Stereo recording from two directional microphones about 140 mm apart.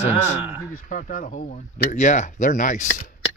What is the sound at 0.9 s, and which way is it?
Speech, 85° left.